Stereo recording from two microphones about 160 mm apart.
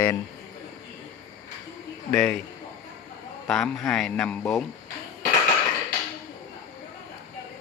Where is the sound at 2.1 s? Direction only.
5° left (ahead or behind).